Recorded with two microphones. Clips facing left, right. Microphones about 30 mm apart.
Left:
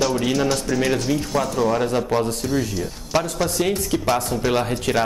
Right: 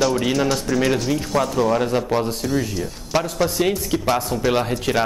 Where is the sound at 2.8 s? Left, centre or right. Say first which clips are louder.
Even; centre.